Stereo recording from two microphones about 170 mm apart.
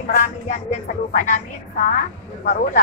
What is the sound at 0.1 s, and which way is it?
Speech, 50° left (ahead or behind).